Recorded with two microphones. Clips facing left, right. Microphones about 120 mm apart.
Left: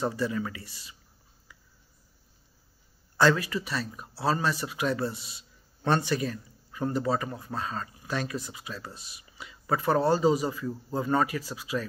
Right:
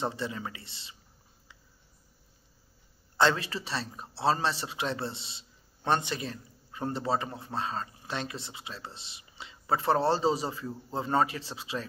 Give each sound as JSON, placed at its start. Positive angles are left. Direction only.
{"t": 0.0, "sound": "a man's voice", "side_deg": -25}
{"t": 3.2, "sound": "a man's voice", "side_deg": -25}